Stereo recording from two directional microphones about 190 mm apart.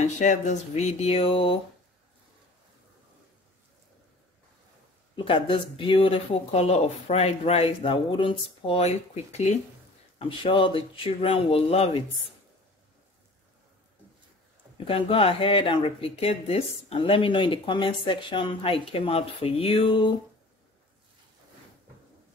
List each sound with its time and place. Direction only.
0.0 s speech: 40° left (ahead or behind)
5.1 s speech: 25° left (ahead or behind)
14.9 s speech: 30° left (ahead or behind)